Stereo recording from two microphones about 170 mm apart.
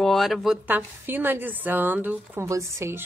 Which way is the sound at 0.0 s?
Centre (ahead or behind).